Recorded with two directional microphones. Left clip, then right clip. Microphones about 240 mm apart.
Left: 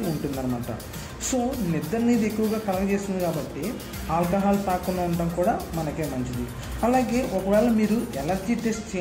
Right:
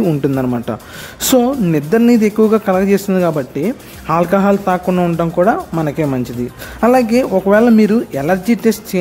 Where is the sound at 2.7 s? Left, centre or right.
Right.